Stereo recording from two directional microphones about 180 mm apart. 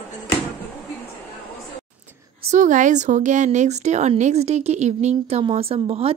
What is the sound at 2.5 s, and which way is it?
Speech, 45° right (ahead or behind).